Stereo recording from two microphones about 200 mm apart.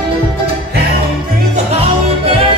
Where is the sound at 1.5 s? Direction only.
30° right (ahead or behind).